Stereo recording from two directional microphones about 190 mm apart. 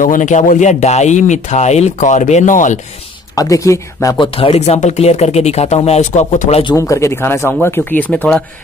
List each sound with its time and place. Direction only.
0.0 s speech: 45° left (ahead or behind)
3.3 s speech: 15° left (ahead or behind)
4.4 s speech: 35° left (ahead or behind)
6.6 s speech: 20° left (ahead or behind)